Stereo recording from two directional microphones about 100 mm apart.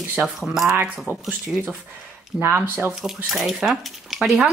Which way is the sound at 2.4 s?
25° right (ahead or behind).